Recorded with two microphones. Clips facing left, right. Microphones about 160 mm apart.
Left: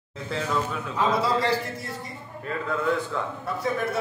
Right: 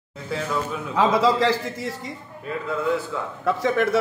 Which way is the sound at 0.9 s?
90° right.